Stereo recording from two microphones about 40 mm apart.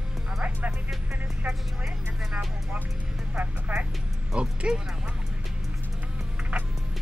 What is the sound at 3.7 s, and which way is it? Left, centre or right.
Speech, right.